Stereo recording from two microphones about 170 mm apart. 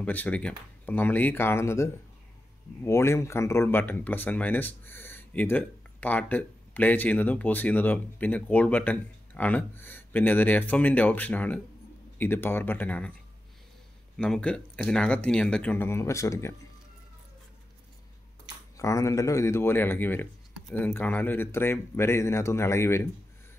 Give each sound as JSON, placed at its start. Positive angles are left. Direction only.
{"t": 0.0, "sound": "speech", "side_deg": 10}
{"t": 14.1, "sound": "speech", "side_deg": 5}
{"t": 18.8, "sound": "speech", "side_deg": 20}